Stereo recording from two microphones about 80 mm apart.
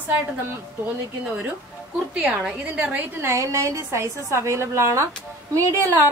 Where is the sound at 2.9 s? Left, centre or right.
Right.